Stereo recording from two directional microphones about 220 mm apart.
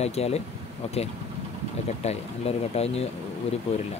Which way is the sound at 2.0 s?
30° left (ahead or behind).